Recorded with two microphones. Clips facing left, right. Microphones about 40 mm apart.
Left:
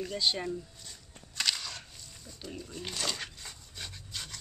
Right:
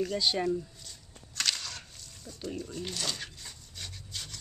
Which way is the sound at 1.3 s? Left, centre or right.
Centre.